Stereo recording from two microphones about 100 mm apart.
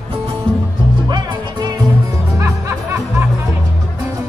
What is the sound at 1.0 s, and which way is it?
Music, 45° right (ahead or behind).